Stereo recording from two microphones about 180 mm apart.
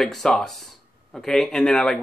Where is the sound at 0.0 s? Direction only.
Centre (ahead or behind).